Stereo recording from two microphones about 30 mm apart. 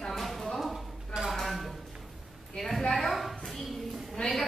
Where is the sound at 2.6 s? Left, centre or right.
Left.